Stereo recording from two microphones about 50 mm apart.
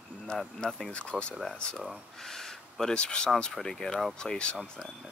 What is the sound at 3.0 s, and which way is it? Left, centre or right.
Speech, centre.